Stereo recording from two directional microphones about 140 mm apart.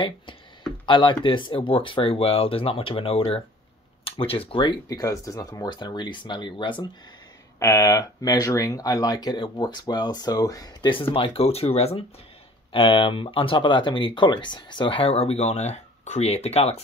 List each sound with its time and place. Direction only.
0.8 s speech: 35° left (ahead or behind)
7.5 s speech: 25° left (ahead or behind); by 16.8 s 50° left (ahead or behind)